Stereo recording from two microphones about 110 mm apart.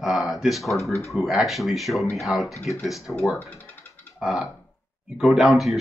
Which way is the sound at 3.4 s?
15° left (ahead or behind).